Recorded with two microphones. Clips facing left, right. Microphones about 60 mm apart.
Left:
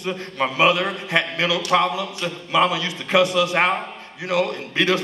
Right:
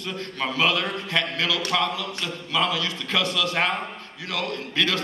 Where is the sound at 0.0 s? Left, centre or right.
Left.